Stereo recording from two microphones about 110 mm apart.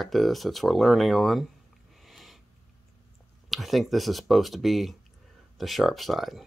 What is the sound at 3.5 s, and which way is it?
Speech, centre (ahead or behind).